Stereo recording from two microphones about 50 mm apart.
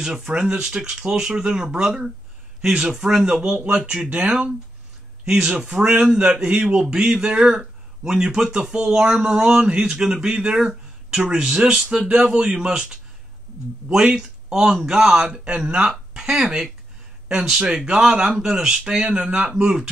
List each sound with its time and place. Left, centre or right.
0.0 s speech: centre
13.8 s speech: centre